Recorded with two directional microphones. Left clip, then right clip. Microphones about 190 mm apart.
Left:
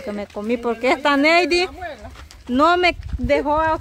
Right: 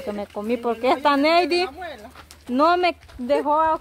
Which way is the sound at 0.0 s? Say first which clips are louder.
Left 1 dB; 5° left (ahead or behind).